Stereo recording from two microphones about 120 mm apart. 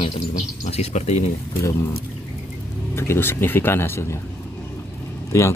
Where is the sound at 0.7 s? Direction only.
65° left (ahead or behind).